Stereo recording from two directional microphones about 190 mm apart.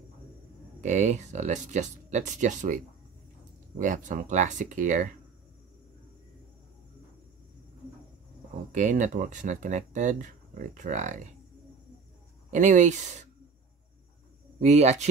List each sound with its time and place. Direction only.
0.7 s speech: 40° right (ahead or behind)
8.7 s speech: 40° right (ahead or behind)
12.4 s speech: 40° right (ahead or behind)
14.6 s speech: 35° right (ahead or behind)